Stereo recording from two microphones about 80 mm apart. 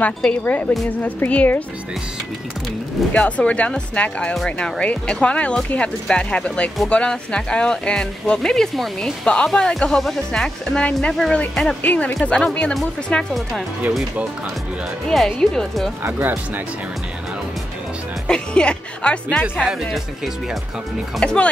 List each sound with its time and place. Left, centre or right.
0.0 s speech: centre
3.1 s speech: centre
11.8 s speech: left
15.0 s speech: centre
16.0 s speech: right
18.2 s speech: centre
19.6 s speech: centre
21.2 s speech: centre